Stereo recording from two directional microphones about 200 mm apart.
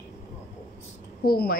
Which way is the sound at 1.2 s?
50° left (ahead or behind).